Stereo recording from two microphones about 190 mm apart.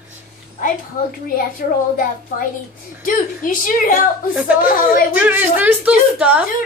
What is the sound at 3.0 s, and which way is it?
Speech, 45° left (ahead or behind).